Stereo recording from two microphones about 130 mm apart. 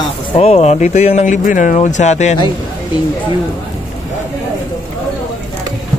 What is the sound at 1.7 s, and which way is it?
Speech, 65° left (ahead or behind).